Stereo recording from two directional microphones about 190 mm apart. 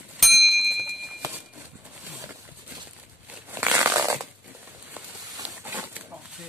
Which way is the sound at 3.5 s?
10° right (ahead or behind).